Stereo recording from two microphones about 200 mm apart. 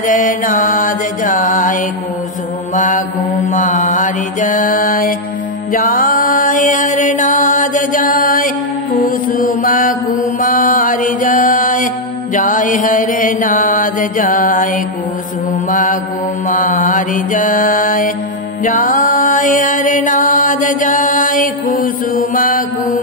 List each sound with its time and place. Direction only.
0.0 s mantra: 40° left (ahead or behind)
18.6 s music: 40° left (ahead or behind)